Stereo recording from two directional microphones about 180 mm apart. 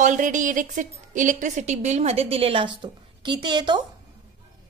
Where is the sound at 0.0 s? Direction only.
45° right (ahead or behind); by 3.8 s 25° right (ahead or behind).